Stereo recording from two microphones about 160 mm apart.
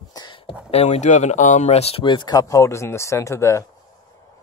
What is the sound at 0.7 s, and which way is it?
Speech, 40° left (ahead or behind).